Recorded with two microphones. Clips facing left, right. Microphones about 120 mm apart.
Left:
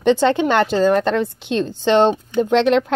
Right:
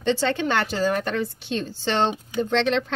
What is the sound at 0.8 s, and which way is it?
Speech, 85° left.